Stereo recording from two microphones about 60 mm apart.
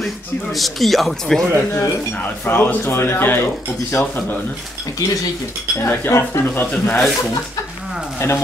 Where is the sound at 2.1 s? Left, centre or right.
Left.